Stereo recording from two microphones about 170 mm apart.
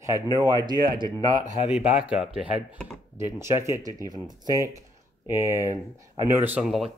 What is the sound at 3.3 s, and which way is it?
Speech, 15° right (ahead or behind).